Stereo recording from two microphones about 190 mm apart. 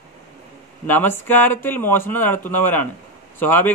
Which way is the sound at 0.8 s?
10° left (ahead or behind).